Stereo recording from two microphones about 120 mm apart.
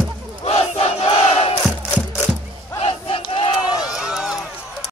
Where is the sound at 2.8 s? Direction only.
50° left (ahead or behind).